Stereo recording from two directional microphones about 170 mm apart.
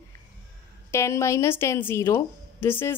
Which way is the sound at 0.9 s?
15° left (ahead or behind).